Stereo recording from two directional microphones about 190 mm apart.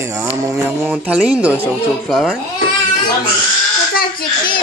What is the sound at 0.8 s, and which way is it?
Speech, 5° right (ahead or behind).